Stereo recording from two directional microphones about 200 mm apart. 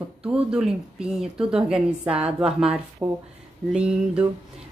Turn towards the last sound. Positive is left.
turn(degrees=-5)  # may be behind; listen again after turning